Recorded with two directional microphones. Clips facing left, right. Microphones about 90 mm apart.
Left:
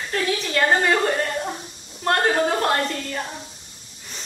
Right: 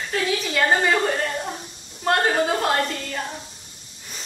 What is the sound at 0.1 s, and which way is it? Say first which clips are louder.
Speech: even; centre (ahead or behind).